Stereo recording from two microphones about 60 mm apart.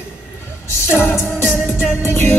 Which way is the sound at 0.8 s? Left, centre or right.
Left.